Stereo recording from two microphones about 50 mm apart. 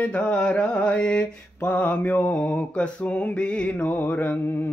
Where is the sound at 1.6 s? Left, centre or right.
Left.